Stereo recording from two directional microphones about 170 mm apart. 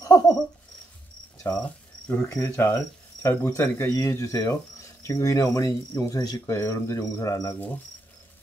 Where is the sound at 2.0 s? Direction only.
10° left (ahead or behind).